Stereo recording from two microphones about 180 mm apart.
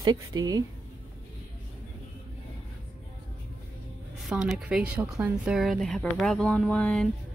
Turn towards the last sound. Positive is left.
turn(degrees=5)  # may be behind; listen again after turning